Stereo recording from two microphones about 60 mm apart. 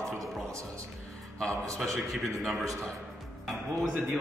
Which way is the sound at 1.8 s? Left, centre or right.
Centre.